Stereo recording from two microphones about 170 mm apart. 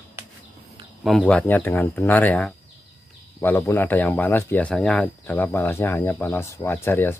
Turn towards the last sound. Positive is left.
turn(degrees=15)  # may be behind; listen again after turning